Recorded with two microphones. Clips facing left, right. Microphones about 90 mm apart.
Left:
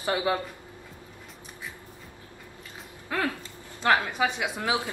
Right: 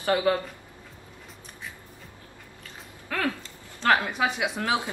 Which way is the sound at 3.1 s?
20° left (ahead or behind).